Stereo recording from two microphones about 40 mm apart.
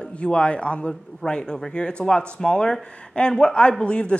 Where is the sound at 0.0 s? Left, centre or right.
Left.